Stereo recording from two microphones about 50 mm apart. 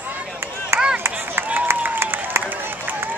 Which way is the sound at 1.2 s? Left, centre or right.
Right.